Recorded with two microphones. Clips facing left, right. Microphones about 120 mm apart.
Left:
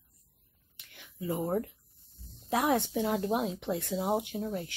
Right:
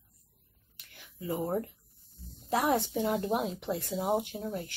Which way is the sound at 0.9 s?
Centre (ahead or behind).